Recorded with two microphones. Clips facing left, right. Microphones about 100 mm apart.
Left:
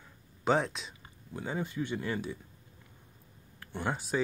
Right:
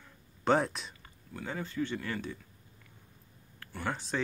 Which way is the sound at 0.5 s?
Centre (ahead or behind).